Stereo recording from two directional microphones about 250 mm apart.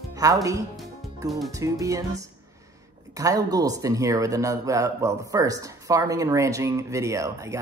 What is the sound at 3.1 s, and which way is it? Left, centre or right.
Speech, centre.